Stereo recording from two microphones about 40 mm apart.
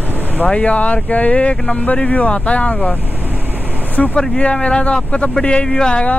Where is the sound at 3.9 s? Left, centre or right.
Left.